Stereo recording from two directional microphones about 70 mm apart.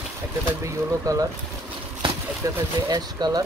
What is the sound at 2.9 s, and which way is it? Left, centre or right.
Speech, right.